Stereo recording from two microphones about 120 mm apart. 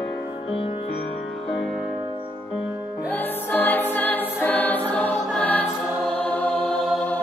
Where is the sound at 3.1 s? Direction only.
15° left (ahead or behind).